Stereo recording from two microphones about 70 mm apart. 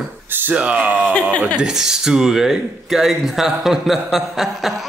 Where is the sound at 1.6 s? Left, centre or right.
Centre.